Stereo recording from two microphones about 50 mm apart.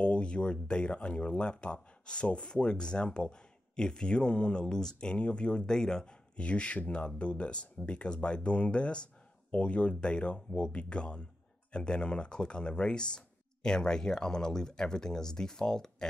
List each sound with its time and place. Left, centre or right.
0.0 s speech: left